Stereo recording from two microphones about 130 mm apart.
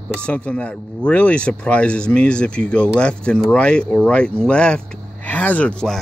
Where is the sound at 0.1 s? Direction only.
10° left (ahead or behind).